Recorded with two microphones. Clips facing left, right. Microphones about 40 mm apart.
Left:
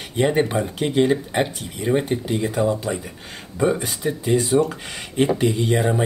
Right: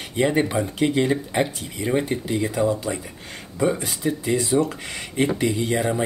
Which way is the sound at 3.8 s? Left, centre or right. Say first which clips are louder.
Even; left.